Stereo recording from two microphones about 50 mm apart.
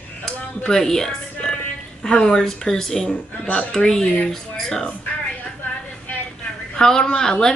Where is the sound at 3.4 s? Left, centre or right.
Left.